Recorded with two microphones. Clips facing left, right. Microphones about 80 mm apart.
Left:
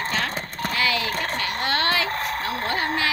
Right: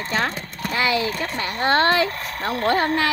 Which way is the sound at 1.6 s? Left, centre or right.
Right.